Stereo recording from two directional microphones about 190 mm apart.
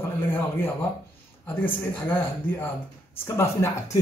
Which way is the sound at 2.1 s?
10° left (ahead or behind).